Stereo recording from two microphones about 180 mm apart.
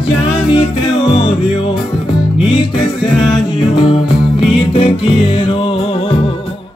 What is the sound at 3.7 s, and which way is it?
Music, 30° left (ahead or behind).